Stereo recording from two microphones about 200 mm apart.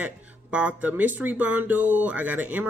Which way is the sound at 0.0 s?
5° right (ahead or behind).